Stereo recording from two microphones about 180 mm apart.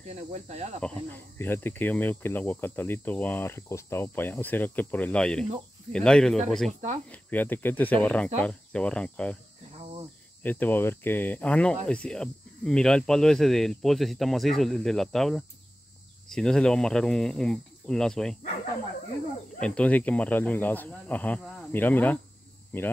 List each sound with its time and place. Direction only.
0.1 s speech: 35° right (ahead or behind)
0.7 s speech: 10° left (ahead or behind)
10.4 s speech: 10° left (ahead or behind)
19.6 s speech: 5° left (ahead or behind)